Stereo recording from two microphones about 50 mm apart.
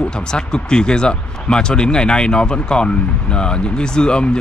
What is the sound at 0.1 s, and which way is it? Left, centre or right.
Speech, centre.